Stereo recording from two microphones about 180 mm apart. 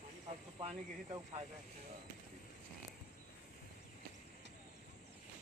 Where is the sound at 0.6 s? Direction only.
30° right (ahead or behind).